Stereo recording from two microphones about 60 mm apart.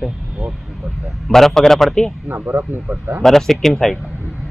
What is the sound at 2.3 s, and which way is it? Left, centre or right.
Speech, right.